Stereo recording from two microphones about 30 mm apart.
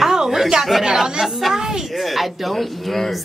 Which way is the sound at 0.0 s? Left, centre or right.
Centre.